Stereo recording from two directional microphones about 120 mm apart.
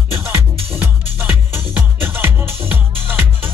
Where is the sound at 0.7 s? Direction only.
15° right (ahead or behind).